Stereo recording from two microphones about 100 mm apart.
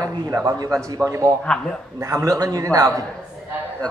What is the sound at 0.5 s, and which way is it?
Speech, 40° right (ahead or behind).